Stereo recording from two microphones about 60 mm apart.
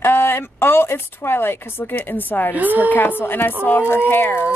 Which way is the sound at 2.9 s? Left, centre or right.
Left.